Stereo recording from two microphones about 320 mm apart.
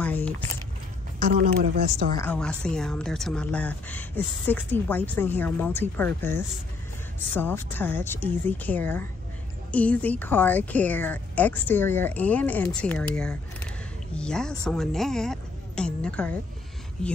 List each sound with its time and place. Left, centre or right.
0.0 s a sound: centre
1.2 s speech: right
2.2 s speech: centre